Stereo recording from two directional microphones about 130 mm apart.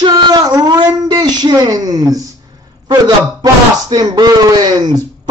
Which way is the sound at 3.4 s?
35° right (ahead or behind).